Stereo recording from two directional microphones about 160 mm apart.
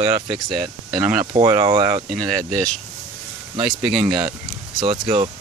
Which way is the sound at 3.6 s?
5° right (ahead or behind).